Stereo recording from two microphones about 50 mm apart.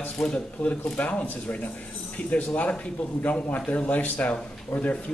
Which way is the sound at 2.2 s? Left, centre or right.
Left.